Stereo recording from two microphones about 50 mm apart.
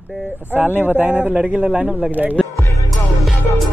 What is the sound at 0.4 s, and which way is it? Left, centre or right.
Speech, right.